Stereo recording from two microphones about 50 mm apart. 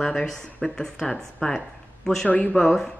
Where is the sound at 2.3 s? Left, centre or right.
Left.